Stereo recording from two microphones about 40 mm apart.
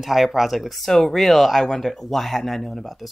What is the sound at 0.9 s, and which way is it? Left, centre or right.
Speech, centre.